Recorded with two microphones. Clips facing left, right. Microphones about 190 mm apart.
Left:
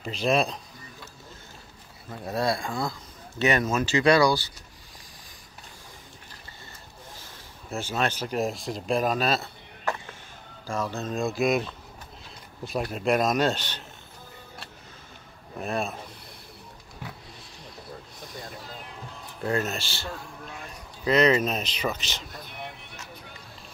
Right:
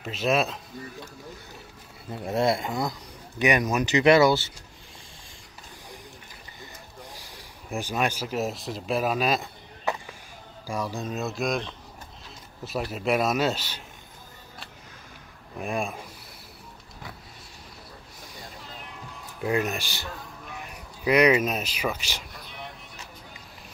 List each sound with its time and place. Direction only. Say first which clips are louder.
0.0 s speech: even; 5° right (ahead or behind)
2.2 s speech: right 3 dB; 25° right (ahead or behind)
7.7 s a man's voice: right 1 dB; 15° right (ahead or behind)
15.6 s a man's voice: even; 10° right (ahead or behind)
19.4 s a man's voice: right 1 dB; 15° right (ahead or behind)